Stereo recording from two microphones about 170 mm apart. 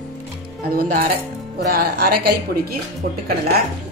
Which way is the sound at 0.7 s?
60° right (ahead or behind).